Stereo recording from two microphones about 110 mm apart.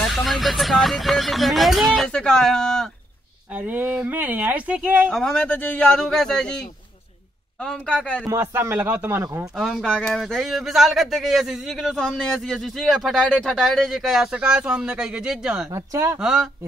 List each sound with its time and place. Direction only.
0.1 s speech: centre (ahead or behind)
3.5 s speech: 15° right (ahead or behind)
5.1 s speech: 5° left (ahead or behind)
8.3 s speech: 25° right (ahead or behind)
9.6 s speech: 5° right (ahead or behind)
9.8 s speech: 5° left (ahead or behind)
15.7 s speech: 25° right (ahead or behind)
16.2 s speech: 5° right (ahead or behind)